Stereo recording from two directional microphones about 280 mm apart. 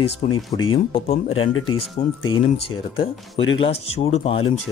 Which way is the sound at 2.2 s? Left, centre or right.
Left.